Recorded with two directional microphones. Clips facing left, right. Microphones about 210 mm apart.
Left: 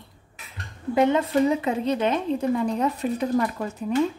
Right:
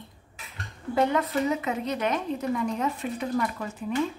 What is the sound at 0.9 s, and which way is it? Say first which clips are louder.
A woman's voice: left 4 dB; 25° left (ahead or behind).